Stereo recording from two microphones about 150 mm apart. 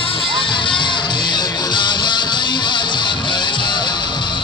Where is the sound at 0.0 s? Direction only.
35° left (ahead or behind).